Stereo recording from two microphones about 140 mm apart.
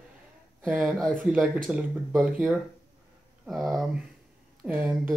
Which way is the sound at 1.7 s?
10° right (ahead or behind).